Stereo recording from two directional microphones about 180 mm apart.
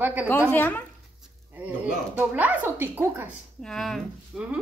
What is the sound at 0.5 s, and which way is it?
Speech, 10° left (ahead or behind).